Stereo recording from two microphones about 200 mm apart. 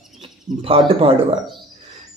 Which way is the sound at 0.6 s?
30° right (ahead or behind).